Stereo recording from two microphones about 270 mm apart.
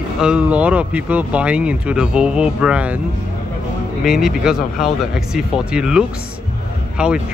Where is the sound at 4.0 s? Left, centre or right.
Centre.